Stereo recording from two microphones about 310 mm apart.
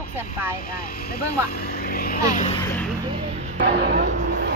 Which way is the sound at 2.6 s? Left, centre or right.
Centre.